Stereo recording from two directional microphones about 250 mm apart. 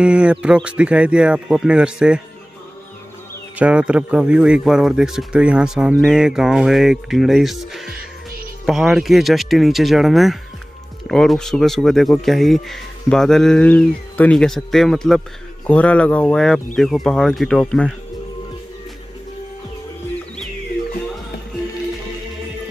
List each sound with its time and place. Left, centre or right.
0.0 s speech: centre
3.5 s speech: centre